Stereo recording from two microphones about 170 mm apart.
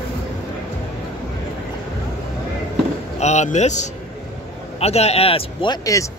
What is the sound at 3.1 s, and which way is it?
A man's voice, 40° left (ahead or behind).